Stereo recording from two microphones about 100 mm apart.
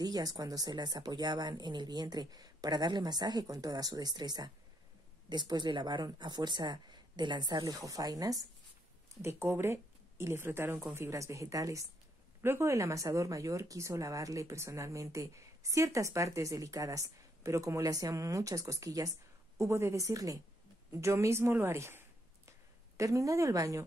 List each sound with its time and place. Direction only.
0.0 s speech: 40° right (ahead or behind)
9.1 s speech: 25° right (ahead or behind)